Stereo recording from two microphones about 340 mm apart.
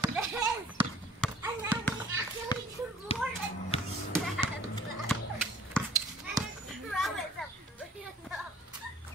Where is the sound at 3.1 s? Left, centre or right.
Centre.